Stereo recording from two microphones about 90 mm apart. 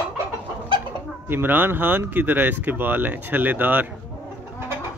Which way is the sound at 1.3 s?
25° right (ahead or behind).